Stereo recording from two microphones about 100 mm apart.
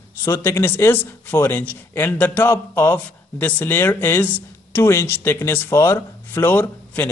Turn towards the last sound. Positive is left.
turn(degrees=20)  # may be behind; listen again after turning